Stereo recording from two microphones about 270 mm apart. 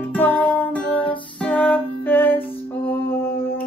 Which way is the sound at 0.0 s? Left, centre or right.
Centre.